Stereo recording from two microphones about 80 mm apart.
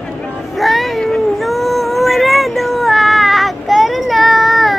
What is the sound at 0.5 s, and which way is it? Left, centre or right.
Cat, centre.